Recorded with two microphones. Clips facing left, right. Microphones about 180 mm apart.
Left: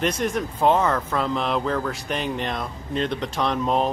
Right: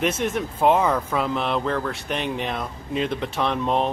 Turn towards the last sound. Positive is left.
turn(degrees=0)  # may be behind; listen again after turning